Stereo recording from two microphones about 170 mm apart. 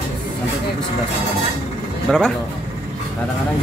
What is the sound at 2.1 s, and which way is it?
Speech, 5° left (ahead or behind).